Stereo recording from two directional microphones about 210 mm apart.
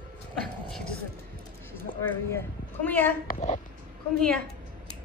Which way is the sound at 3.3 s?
35° left (ahead or behind).